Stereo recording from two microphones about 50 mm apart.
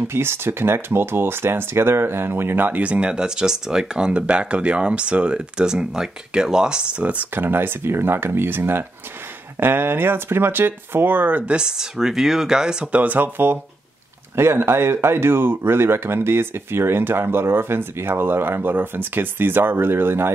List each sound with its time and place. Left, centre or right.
0.1 s speech: right
2.8 s speech: right
7.3 s speech: right
11.4 s speech: centre
12.9 s speech: right
14.3 s speech: right